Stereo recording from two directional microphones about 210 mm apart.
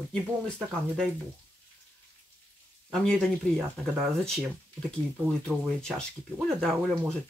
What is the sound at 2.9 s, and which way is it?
Speech, centre (ahead or behind).